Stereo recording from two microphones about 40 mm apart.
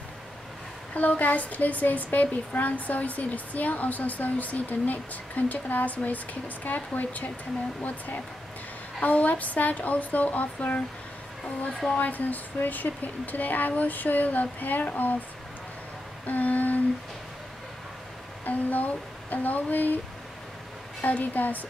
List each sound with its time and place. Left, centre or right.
0.9 s a woman's voice: left
9.0 s speech: left
12.0 s a woman's voice: left
16.3 s humming: left
18.4 s a woman's voice: left
21.0 s a woman's voice: left